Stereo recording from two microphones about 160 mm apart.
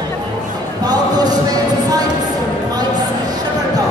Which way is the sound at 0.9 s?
25° right (ahead or behind).